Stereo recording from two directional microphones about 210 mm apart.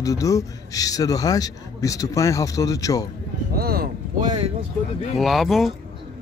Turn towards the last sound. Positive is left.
turn(degrees=0)  # may be behind; listen again after turning